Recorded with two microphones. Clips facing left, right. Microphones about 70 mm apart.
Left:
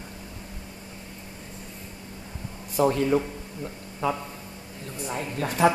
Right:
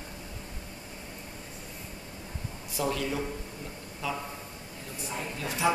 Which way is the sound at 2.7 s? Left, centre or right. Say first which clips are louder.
Left 9 dB; left.